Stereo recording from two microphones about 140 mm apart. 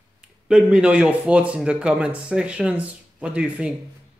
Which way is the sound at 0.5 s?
10° right (ahead or behind).